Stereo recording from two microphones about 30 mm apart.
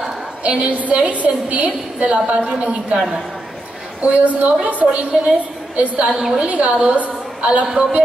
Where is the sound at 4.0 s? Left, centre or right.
Right.